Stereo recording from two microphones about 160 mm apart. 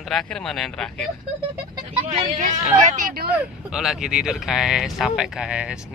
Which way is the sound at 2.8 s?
55° right (ahead or behind).